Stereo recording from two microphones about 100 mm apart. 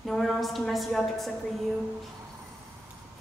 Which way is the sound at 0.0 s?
Centre (ahead or behind).